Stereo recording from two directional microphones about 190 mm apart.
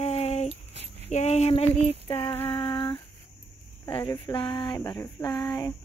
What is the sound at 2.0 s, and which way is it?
Female singing, 25° left (ahead or behind).